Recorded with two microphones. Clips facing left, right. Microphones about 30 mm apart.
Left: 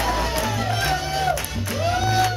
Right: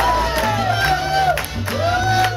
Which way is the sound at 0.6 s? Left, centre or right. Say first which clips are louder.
Right 6 dB; right.